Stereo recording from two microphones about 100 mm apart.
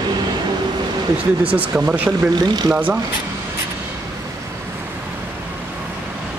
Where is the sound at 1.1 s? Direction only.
15° right (ahead or behind).